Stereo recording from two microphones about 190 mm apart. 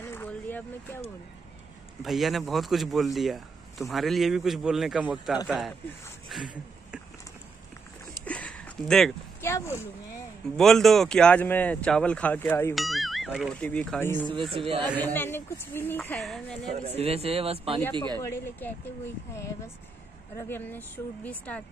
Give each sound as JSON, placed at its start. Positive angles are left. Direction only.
{"t": 0.0, "sound": "vehicle", "side_deg": 10}
{"t": 2.0, "sound": "speech", "side_deg": 0}
{"t": 8.3, "sound": "a sound", "side_deg": 5}
{"t": 9.4, "sound": "speech", "side_deg": 15}
{"t": 10.4, "sound": "speech", "side_deg": 0}
{"t": 12.7, "sound": "speech", "side_deg": 0}
{"t": 14.5, "sound": "speech", "side_deg": -30}
{"t": 15.1, "sound": "speech", "side_deg": 15}
{"t": 16.0, "sound": "speech", "side_deg": 0}
{"t": 16.8, "sound": "a man's voice", "side_deg": -30}
{"t": 18.2, "sound": "speech", "side_deg": 15}